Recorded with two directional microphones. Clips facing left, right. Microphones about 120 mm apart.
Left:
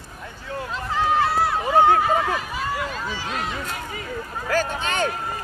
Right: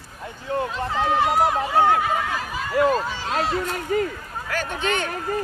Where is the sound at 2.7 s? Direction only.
50° right (ahead or behind).